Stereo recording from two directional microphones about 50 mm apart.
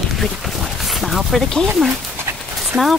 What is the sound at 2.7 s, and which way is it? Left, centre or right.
Speech, right.